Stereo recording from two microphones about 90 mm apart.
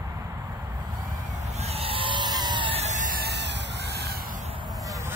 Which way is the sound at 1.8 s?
85° right.